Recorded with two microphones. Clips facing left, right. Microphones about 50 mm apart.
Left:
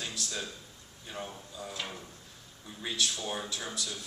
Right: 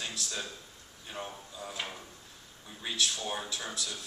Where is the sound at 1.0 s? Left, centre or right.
Centre.